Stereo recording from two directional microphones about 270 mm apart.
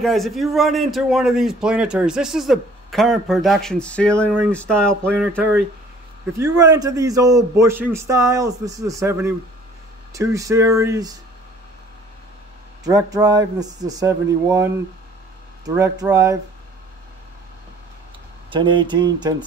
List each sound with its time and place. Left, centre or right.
0.0 s a man's voice: centre
6.3 s a man's voice: centre
12.8 s a man's voice: centre
18.5 s a man's voice: centre